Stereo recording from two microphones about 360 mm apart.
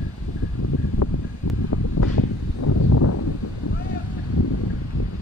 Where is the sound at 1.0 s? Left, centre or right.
Left.